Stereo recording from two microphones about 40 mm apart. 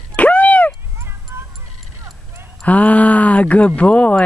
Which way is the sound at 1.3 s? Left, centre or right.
Right.